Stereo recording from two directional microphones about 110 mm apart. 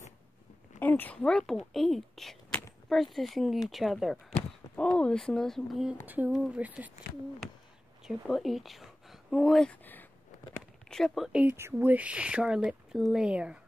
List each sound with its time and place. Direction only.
0.7 s a woman's voice: 15° left (ahead or behind); by 5.9 s centre (ahead or behind)
6.0 s speech: 15° right (ahead or behind)
8.0 s speech: centre (ahead or behind)
10.9 s a woman's voice: 5° left (ahead or behind)
11.4 s speech: 20° right (ahead or behind)